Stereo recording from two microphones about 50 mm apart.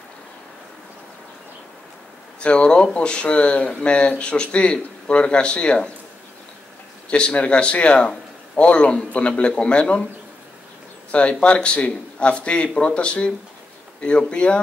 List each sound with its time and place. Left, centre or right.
2.4 s speech: left
7.1 s speech: left
11.1 s speech: left